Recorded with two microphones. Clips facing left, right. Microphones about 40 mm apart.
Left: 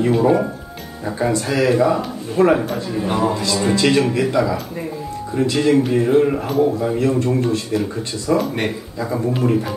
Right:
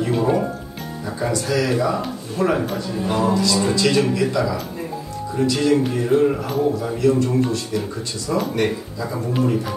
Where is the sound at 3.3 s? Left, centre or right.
Left.